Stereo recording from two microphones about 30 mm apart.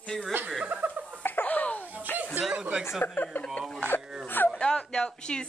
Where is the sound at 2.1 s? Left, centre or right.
Left.